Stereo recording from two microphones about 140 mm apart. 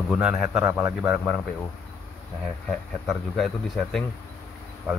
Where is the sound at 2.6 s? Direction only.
5° left (ahead or behind).